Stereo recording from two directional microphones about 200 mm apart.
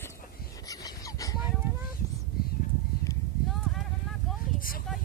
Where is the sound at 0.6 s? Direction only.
15° left (ahead or behind).